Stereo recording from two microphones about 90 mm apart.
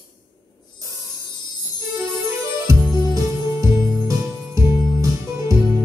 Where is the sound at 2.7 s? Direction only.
35° right (ahead or behind).